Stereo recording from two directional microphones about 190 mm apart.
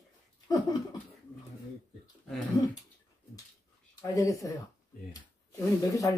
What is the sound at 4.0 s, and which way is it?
Speech, 15° left (ahead or behind).